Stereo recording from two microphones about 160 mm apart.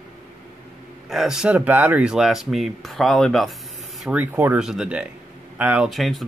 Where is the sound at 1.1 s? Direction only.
5° right (ahead or behind).